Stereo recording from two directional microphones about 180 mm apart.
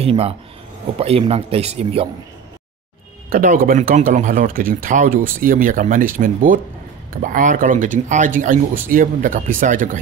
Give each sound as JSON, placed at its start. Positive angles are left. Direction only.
{"t": 0.0, "sound": "speech", "side_deg": -35}
{"t": 3.3, "sound": "speech", "side_deg": -55}